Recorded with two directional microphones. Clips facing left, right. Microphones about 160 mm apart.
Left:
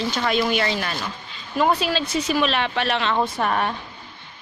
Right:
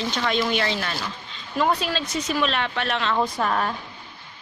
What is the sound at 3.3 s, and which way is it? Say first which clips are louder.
Speech: left 1 dB; 5° left (ahead or behind).